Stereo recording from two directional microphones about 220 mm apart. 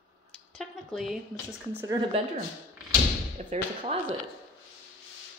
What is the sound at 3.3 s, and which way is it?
Speech, 30° right (ahead or behind).